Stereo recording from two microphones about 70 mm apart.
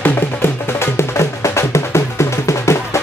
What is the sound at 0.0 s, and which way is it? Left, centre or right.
Music, left.